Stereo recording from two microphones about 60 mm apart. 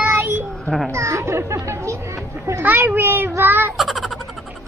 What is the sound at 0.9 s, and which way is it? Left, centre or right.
A child's voice, right.